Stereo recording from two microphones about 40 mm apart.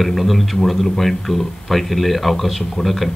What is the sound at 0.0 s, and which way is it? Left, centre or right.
Speech, centre.